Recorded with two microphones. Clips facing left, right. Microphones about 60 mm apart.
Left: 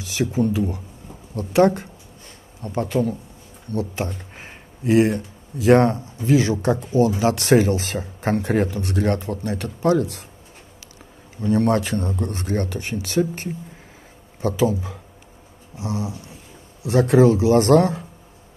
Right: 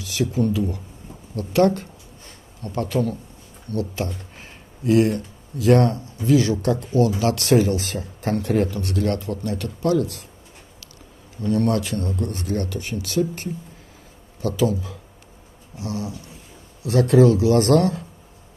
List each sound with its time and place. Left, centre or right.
0.0 s a sound: left
0.5 s speech: left
11.4 s speech: left
14.6 s speech: left